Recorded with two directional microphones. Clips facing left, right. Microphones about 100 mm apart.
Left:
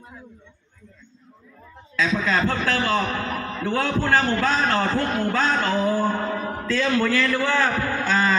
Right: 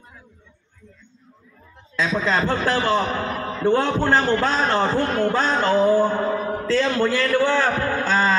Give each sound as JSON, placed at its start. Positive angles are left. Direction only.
{"t": 2.0, "sound": "a man's voice", "side_deg": -20}
{"t": 5.8, "sound": "music", "side_deg": -20}
{"t": 6.6, "sound": "a man's voice", "side_deg": -25}
{"t": 8.0, "sound": "a sound", "side_deg": -20}